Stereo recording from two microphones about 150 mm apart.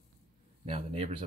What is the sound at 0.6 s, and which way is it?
Speech, 45° right (ahead or behind).